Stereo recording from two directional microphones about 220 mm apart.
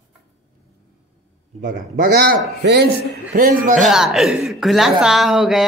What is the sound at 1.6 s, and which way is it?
A man's voice, 40° right (ahead or behind).